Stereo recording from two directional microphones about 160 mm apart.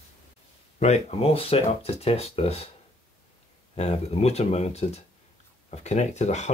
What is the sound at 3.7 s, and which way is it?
Speech, 40° left (ahead or behind).